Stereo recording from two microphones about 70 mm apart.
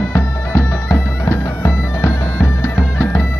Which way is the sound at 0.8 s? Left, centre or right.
Left.